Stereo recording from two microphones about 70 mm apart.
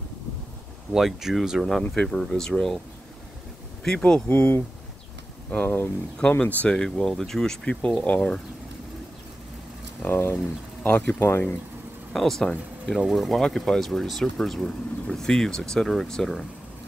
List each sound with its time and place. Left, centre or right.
0.9 s speech: centre
1.8 s speech: centre
3.8 s speech: centre
4.3 s speech: left
6.8 s speech: centre
10.0 s speech: left
11.1 s speech: left
12.1 s speech: centre